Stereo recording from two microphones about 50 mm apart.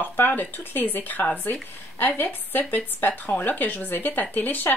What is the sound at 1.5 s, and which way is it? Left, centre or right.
Speech, left.